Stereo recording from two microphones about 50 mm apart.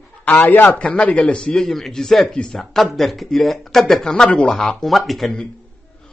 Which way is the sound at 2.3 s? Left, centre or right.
Centre.